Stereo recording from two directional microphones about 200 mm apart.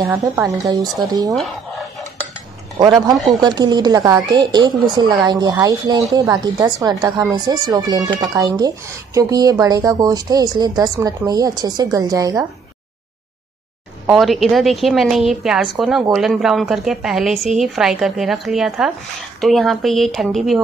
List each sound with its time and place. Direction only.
0.0 s speech: 15° right (ahead or behind)
1.3 s a sound: centre (ahead or behind)
2.8 s speech: 20° right (ahead or behind)
14.0 s a woman's voice: centre (ahead or behind)